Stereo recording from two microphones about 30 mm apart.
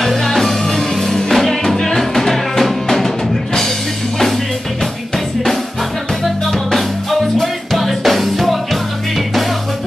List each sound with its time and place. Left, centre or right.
0.0 s music: centre
7.1 s music: centre